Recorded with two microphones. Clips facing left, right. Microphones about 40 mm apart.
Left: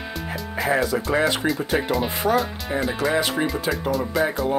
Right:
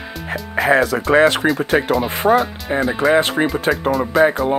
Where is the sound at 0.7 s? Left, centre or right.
Right.